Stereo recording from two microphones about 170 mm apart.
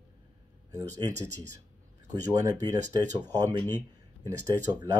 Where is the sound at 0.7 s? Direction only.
20° right (ahead or behind).